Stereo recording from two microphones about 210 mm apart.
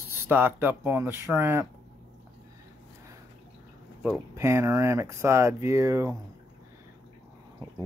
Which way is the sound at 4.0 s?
10° right (ahead or behind).